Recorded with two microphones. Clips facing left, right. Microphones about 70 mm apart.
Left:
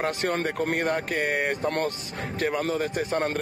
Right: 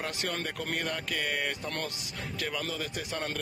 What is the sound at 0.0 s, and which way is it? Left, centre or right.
A man's voice, left.